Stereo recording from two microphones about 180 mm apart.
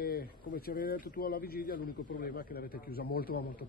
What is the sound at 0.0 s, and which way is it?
Speech, 55° left (ahead or behind).